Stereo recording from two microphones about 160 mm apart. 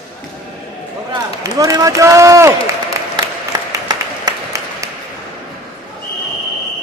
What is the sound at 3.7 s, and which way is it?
Applause, 20° right (ahead or behind).